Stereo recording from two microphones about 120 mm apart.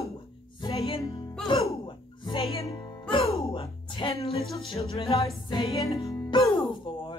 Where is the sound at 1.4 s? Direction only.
45° left (ahead or behind).